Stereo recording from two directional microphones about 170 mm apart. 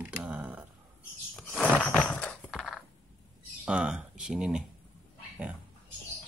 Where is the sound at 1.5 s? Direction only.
10° left (ahead or behind).